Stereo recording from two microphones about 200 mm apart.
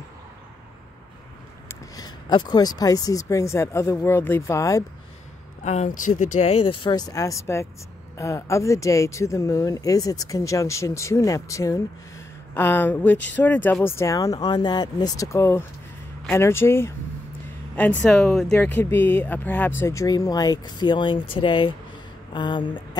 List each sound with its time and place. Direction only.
1.7 s speech: 20° left (ahead or behind)
5.6 s speech: 35° left (ahead or behind)